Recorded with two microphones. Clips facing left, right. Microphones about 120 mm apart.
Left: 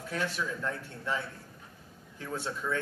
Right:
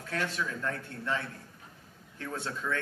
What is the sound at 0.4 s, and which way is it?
Speech, 15° left (ahead or behind).